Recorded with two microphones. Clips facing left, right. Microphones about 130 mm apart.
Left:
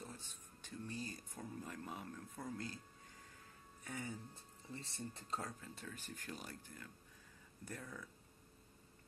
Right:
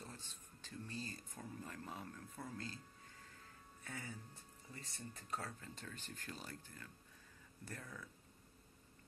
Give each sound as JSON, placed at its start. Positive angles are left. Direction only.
{"t": 0.0, "sound": "speech", "side_deg": 15}
{"t": 3.8, "sound": "speech", "side_deg": 20}
{"t": 5.6, "sound": "speech", "side_deg": 5}